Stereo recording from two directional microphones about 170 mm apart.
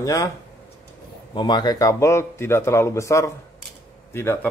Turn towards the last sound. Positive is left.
turn(degrees=15)  # may be behind; listen again after turning